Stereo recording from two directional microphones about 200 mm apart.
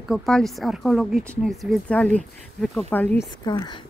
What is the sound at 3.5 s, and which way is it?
Speech, 20° left (ahead or behind).